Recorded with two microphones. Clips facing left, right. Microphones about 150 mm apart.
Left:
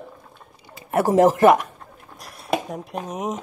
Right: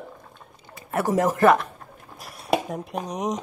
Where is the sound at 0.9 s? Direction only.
25° left (ahead or behind).